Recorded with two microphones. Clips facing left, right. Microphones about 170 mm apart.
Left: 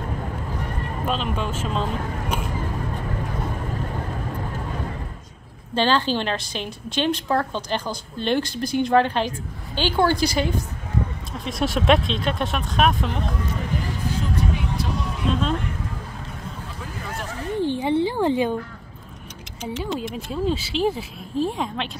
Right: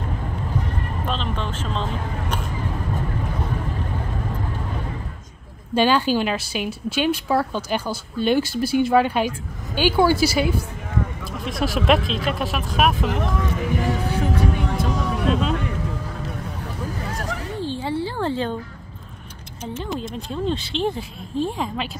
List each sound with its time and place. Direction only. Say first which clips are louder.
1.0 s speech: left 3 dB; 10° left (ahead or behind)
5.8 s a woman's voice: right 3 dB; 10° right (ahead or behind)
13.2 s vehicle: right 4 dB; 85° right; by 14.9 s 50° right (ahead or behind)
17.6 s a sound: left 6 dB; 15° left (ahead or behind)
20.2 s speech: left 1 dB; 5° left (ahead or behind)